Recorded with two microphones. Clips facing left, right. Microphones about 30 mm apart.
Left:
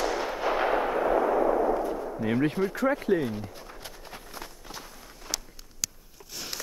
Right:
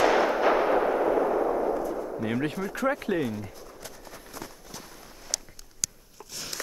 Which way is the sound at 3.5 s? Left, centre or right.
Left.